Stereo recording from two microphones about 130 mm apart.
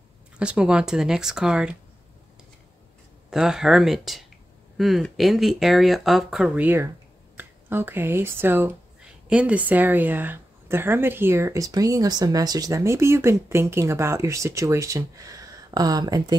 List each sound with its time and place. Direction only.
0.4 s speech: 10° right (ahead or behind)
3.3 s a woman's voice: 5° right (ahead or behind); by 16.3 s 30° right (ahead or behind)